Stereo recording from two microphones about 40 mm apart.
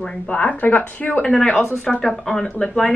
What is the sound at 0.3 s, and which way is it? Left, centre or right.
Speech, left.